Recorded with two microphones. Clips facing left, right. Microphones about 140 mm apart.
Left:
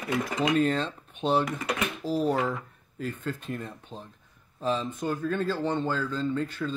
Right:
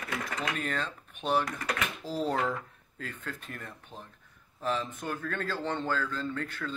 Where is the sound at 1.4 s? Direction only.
15° left (ahead or behind).